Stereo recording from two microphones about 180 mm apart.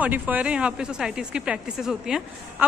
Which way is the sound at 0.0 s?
10° right (ahead or behind).